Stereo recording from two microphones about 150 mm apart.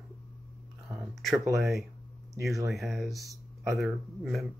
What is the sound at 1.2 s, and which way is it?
Speech, centre (ahead or behind).